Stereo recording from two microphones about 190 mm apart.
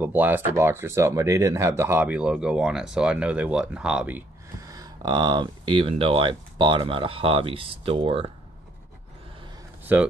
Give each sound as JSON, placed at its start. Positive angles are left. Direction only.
{"t": 0.0, "sound": "speech", "side_deg": -10}
{"t": 9.9, "sound": "speech", "side_deg": -10}